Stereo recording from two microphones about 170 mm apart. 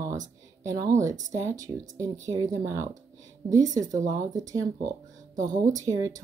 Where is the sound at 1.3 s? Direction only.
20° right (ahead or behind).